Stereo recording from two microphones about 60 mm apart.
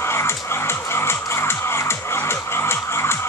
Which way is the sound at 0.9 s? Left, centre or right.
Left.